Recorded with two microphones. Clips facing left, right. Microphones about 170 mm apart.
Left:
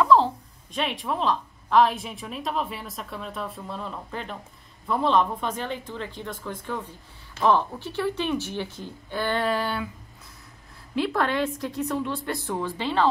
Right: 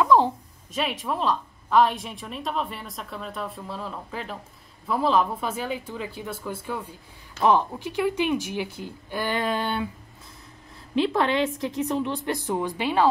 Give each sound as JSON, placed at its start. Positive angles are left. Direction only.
{"t": 0.0, "sound": "a sound", "side_deg": -15}
{"t": 0.7, "sound": "a woman's voice", "side_deg": 0}
{"t": 11.0, "sound": "speech", "side_deg": -20}